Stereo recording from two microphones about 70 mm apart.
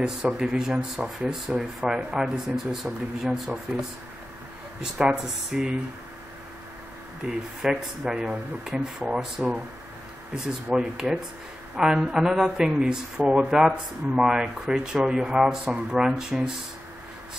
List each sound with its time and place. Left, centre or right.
0.4 s speech: centre
4.9 s speech: centre
7.2 s speech: centre
13.2 s speech: right
13.5 s speech: centre